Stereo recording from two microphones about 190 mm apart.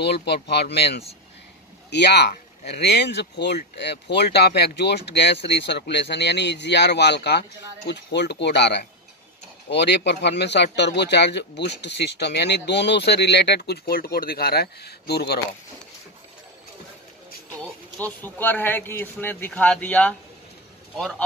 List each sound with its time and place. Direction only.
0.0 s speech: 60° left (ahead or behind)
17.6 s speech: 10° left (ahead or behind)